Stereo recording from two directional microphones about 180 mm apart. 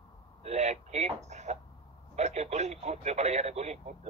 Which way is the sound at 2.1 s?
40° right (ahead or behind).